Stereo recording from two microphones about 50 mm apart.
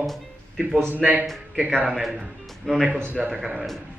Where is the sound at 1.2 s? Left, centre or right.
Centre.